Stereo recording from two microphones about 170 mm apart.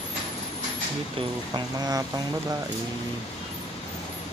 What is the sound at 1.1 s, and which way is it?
Speech, 25° right (ahead or behind).